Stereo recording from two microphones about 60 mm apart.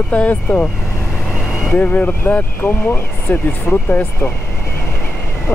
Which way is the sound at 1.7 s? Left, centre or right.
Left.